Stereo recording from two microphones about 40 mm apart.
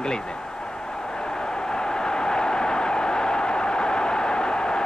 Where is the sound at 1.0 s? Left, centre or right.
Centre.